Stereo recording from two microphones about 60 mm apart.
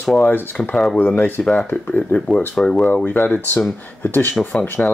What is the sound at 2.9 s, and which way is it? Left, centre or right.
Speech, left.